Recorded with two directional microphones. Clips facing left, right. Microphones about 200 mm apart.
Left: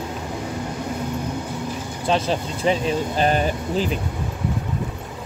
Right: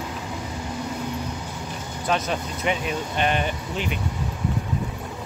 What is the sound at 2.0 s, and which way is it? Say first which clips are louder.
Speech: left 4 dB; 30° left (ahead or behind).